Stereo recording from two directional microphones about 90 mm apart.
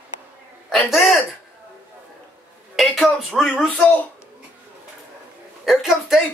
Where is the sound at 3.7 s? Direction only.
20° left (ahead or behind).